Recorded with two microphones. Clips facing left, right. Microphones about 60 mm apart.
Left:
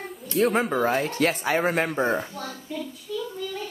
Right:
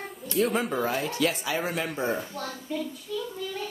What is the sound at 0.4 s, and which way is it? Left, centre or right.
Speech, left.